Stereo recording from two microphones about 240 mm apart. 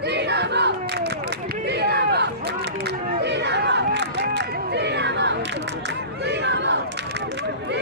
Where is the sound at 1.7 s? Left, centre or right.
Right.